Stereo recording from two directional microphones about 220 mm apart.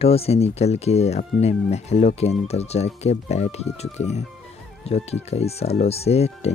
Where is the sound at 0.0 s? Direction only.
25° left (ahead or behind).